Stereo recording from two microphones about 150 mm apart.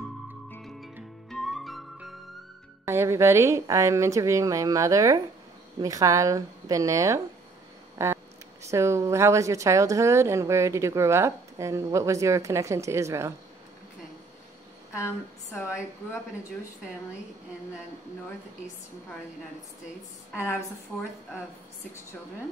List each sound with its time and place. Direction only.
1.3 s music: centre (ahead or behind)
2.8 s a woman's voice: 20° right (ahead or behind)
14.9 s speech: 15° left (ahead or behind)